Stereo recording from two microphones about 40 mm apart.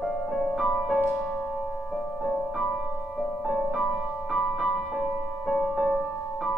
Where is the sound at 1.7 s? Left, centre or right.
Centre.